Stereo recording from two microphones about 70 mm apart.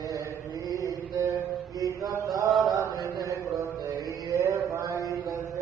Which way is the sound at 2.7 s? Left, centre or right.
Right.